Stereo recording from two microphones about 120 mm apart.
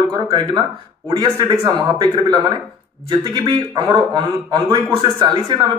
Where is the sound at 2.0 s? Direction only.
35° right (ahead or behind).